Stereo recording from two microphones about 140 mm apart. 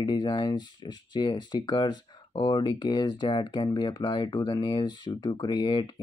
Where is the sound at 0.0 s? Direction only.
30° left (ahead or behind).